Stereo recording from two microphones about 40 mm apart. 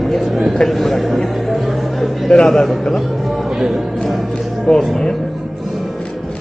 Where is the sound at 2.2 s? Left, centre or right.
Centre.